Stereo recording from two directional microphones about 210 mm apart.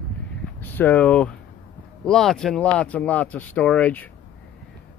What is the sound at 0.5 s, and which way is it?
Speech, 10° left (ahead or behind).